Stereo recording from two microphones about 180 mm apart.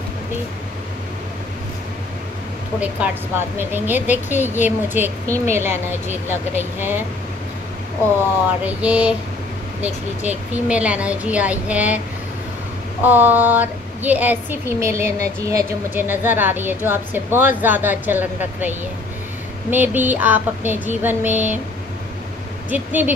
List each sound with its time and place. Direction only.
2.8 s a woman's voice: 10° right (ahead or behind)
8.6 s a woman's voice: 5° right (ahead or behind)
13.0 s a woman's voice: 10° right (ahead or behind)
15.0 s speech: 40° left (ahead or behind)
15.4 s a woman's voice: 10° right (ahead or behind)
22.7 s a woman's voice: 10° right (ahead or behind)